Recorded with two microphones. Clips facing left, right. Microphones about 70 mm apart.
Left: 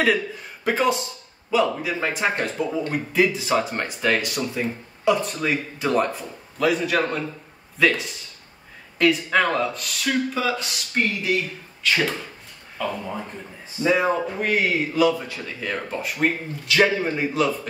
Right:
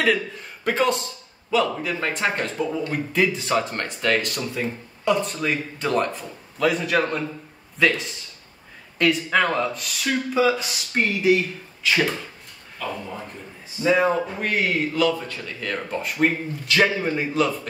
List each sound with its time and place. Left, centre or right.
0.0 s speech: centre
10.9 s speech: centre
11.8 s speech: centre
13.8 s speech: centre